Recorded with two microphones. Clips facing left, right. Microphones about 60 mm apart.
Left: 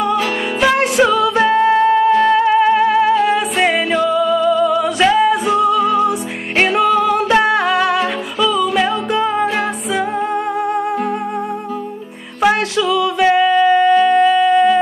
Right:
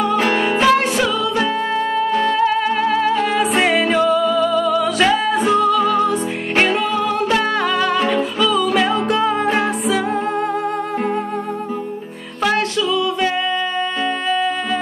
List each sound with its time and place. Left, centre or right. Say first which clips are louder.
0.7 s music: left 5 dB; centre
1.3 s music: left 6 dB; left; by 4.4 s centre
4.4 s music: left 3 dB; centre
4.9 s music: left 3 dB; centre
5.6 s music: left 2 dB; right
6.7 s music: left 5 dB; left; by 10.0 s centre
12.4 s a sound: left 3 dB; centre
13.4 s music: left 8 dB; centre
13.7 s a sound: left 11 dB; left
14.3 s music: left 7 dB; centre